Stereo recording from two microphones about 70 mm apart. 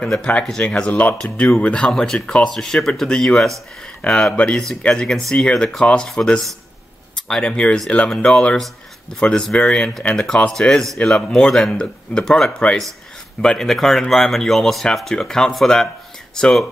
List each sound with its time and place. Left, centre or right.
0.1 s speech: centre